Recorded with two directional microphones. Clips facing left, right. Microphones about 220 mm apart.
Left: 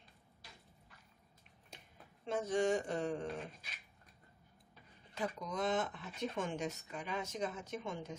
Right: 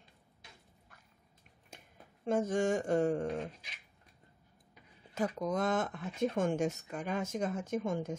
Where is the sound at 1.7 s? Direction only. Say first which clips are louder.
Right 3 dB; 45° right (ahead or behind).